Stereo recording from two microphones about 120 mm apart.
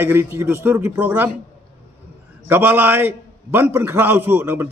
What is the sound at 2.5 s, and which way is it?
A man's voice, 15° right (ahead or behind).